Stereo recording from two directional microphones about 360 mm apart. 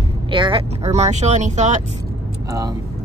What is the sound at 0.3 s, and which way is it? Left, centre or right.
Speech, centre.